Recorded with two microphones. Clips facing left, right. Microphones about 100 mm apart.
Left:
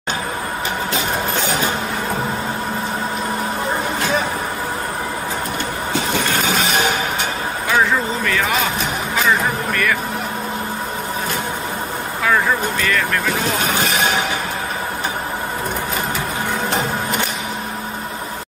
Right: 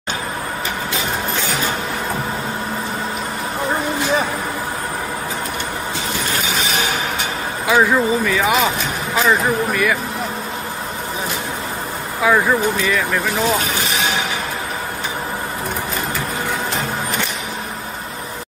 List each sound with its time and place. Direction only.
7.6 s speech: 5° right (ahead or behind)
9.7 s speech: 10° right (ahead or behind)
12.2 s speech: 10° right (ahead or behind)